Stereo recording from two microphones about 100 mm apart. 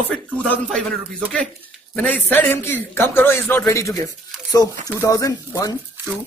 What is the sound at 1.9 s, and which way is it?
A man's voice, 15° left (ahead or behind).